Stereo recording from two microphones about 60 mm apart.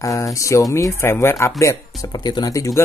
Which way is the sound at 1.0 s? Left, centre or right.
Left.